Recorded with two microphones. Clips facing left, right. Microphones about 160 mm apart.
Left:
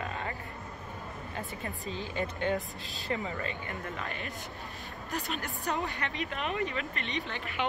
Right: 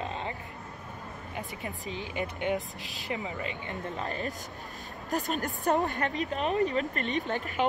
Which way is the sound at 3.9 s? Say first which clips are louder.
Right 5 dB; 35° right (ahead or behind).